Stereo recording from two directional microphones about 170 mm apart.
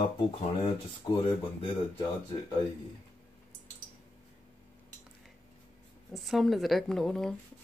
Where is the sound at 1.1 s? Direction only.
25° left (ahead or behind).